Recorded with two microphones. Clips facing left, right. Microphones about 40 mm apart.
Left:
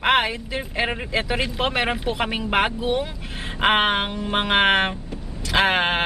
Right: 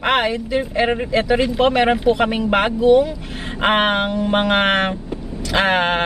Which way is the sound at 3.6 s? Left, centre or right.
Centre.